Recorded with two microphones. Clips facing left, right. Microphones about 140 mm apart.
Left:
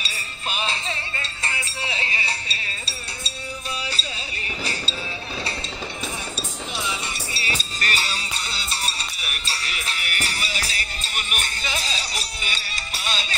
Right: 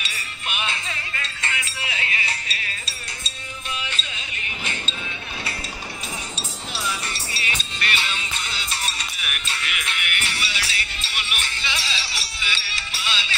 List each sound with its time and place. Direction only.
0.0 s music: 35° left (ahead or behind)
7.4 s music: 40° left (ahead or behind)